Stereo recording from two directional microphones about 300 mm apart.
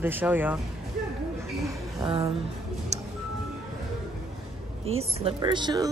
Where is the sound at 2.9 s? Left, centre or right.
Right.